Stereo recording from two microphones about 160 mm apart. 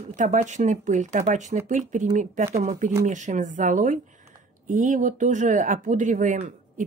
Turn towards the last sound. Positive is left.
turn(degrees=-55)  # may be behind; listen again after turning